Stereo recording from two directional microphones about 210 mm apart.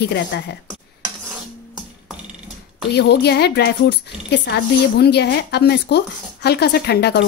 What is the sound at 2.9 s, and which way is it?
Speech, 50° left (ahead or behind).